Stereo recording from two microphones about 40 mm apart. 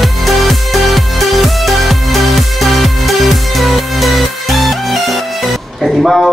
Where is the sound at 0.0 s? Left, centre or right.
Centre.